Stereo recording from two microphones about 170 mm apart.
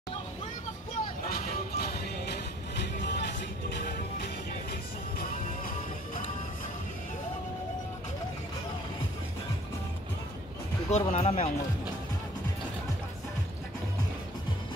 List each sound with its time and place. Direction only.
1.3 s music: 65° left (ahead or behind)
3.0 s music: 90° left
5.2 s music: 55° left (ahead or behind)
10.9 s speech: 40° left (ahead or behind)